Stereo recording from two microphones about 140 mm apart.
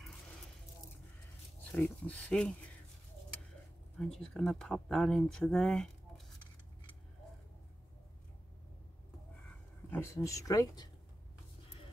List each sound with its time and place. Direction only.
1.7 s speech: 10° left (ahead or behind)
4.0 s speech: 5° left (ahead or behind)
9.8 s speech: 20° left (ahead or behind)